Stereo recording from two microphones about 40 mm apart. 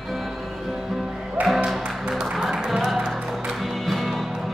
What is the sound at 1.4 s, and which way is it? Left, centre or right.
Music, right.